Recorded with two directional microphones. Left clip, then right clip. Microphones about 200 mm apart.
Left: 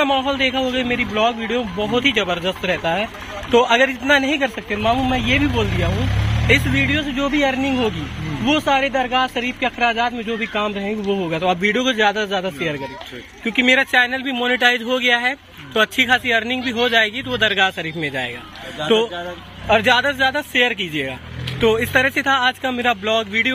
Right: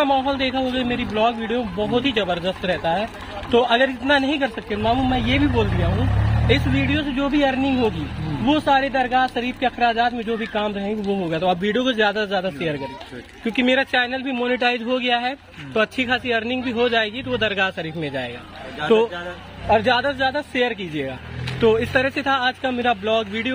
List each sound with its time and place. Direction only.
0.0 s speech: 10° left (ahead or behind)
18.8 s speech: 60° left (ahead or behind)
19.7 s speech: 5° left (ahead or behind)